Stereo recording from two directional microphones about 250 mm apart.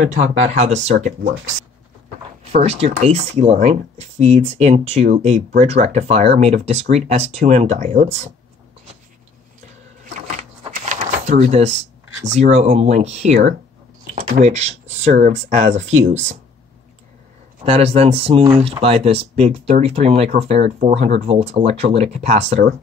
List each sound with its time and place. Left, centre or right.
0.1 s speech: right
2.5 s speech: right
10.3 s a sound: right
12.3 s speech: right
17.6 s speech: right